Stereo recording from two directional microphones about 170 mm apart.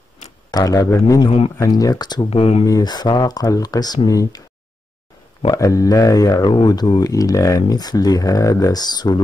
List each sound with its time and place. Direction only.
0.5 s speech: 20° left (ahead or behind)
2.2 s speech: 35° left (ahead or behind)
2.6 s speech: 20° left (ahead or behind)
5.4 s speech: 20° left (ahead or behind)